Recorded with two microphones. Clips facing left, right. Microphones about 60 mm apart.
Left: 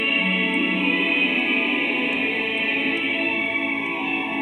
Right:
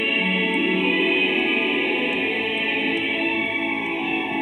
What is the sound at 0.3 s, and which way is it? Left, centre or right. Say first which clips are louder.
Music: right 1 dB; centre.